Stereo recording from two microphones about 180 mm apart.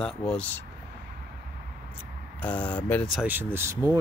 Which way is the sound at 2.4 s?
10° left (ahead or behind).